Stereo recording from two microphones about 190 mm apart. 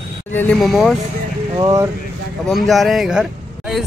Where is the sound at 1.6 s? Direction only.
15° right (ahead or behind).